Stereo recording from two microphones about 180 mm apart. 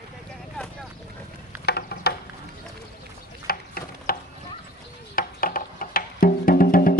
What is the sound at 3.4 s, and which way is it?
Horse, 55° left (ahead or behind).